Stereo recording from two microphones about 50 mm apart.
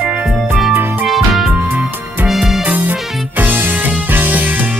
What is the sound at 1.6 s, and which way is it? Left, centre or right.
Music, right.